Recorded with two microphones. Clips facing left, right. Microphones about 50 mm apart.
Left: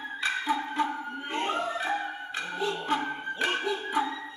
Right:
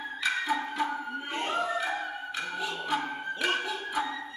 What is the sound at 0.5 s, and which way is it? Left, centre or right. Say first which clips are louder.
Music: left 1 dB; centre.